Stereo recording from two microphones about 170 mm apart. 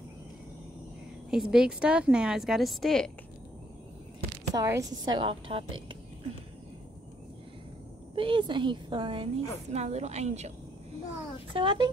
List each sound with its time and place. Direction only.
1.3 s a woman's voice: 5° right (ahead or behind)
4.6 s a woman's voice: 20° right (ahead or behind)
8.2 s a woman's voice: 30° right (ahead or behind)
11.5 s a woman's voice: 30° right (ahead or behind)